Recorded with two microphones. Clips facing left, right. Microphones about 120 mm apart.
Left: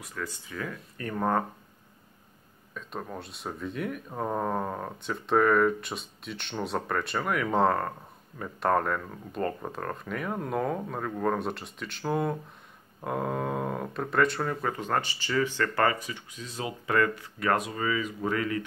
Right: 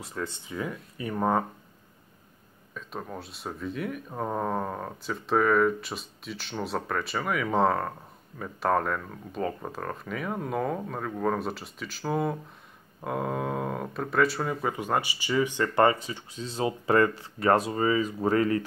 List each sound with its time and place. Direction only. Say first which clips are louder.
0.0 s speech: right 3 dB; 25° right (ahead or behind)
0.9 s speech: right 1 dB; 10° right (ahead or behind)
2.7 s speech: even; centre (ahead or behind); by 18.7 s 35° right (ahead or behind)